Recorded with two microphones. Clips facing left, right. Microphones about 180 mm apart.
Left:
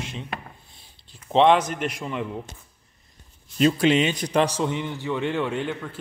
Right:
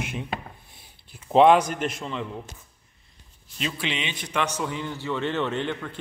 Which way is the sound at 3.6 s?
45° left (ahead or behind).